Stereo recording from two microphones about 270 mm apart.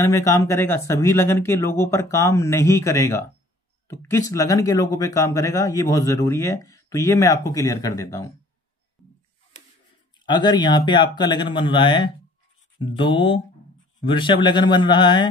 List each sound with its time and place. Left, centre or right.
0.0 s speech: centre
10.2 s speech: centre